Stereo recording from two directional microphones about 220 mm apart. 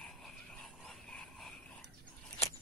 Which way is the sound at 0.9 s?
5° left (ahead or behind).